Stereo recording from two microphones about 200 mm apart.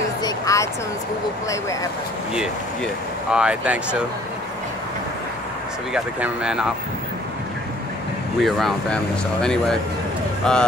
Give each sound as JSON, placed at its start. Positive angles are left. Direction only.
{"t": 0.2, "sound": "a sound", "side_deg": 15}
{"t": 1.5, "sound": "speech", "side_deg": 15}
{"t": 2.3, "sound": "speech", "side_deg": -5}
{"t": 5.9, "sound": "speech", "side_deg": -5}
{"t": 8.4, "sound": "speech", "side_deg": 0}